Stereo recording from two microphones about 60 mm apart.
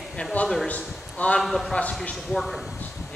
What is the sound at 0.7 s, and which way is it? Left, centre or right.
Speech, left.